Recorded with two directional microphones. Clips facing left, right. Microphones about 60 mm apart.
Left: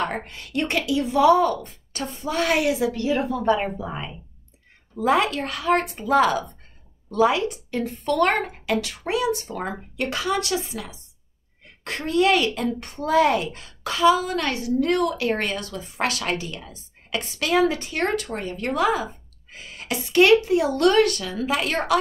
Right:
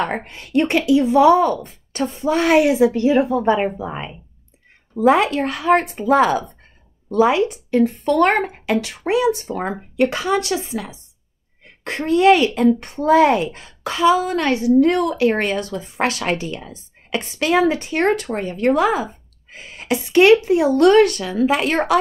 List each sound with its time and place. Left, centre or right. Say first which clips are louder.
0.1 s speech: right 8 dB; right